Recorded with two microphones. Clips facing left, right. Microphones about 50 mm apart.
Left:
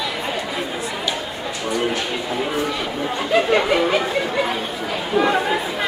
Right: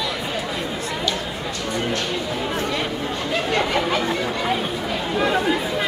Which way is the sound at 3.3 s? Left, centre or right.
Centre.